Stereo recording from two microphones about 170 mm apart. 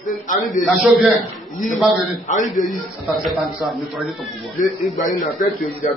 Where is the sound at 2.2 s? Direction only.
45° left (ahead or behind).